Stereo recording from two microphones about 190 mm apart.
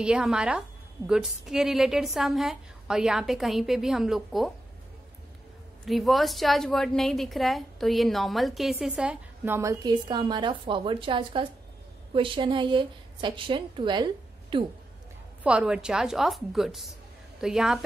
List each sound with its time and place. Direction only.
0.0 s a woman's voice: 5° right (ahead or behind)
5.9 s a woman's voice: centre (ahead or behind); by 14.6 s 25° right (ahead or behind)
15.4 s a woman's voice: 5° right (ahead or behind)